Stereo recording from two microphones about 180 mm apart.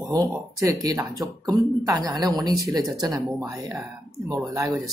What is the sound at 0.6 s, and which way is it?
Speech, 15° right (ahead or behind).